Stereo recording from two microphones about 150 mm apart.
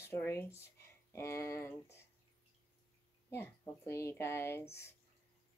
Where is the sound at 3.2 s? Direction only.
15° left (ahead or behind).